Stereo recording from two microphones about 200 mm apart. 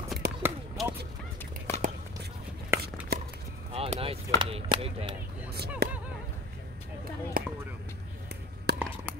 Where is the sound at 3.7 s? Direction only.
30° right (ahead or behind).